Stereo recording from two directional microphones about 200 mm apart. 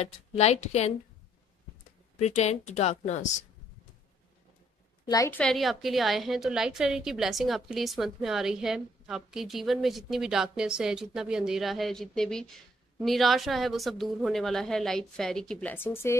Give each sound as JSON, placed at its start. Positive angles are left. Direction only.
{"t": 0.0, "sound": "a woman's voice", "side_deg": 35}
{"t": 2.1, "sound": "a woman's voice", "side_deg": 35}
{"t": 5.0, "sound": "a woman's voice", "side_deg": 15}
{"t": 5.4, "sound": "a woman's voice", "side_deg": 0}